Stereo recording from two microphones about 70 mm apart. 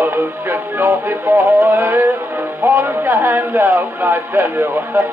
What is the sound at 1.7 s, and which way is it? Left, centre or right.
Speech, right.